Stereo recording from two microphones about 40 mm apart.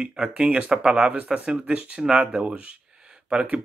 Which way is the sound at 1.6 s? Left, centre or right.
Right.